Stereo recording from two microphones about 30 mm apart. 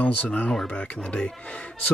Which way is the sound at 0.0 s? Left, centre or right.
Left.